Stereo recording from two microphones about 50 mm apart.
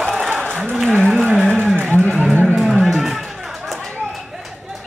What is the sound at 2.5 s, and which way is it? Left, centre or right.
Music, centre.